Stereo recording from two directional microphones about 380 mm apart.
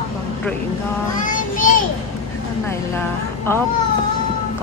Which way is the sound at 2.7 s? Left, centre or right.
Centre.